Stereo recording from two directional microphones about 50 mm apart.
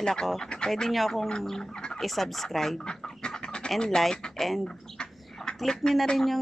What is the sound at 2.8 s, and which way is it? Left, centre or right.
Chicken, centre.